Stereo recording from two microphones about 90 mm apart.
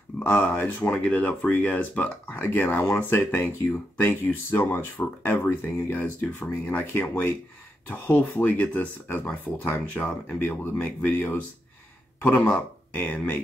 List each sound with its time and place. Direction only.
0.2 s speech: 20° left (ahead or behind)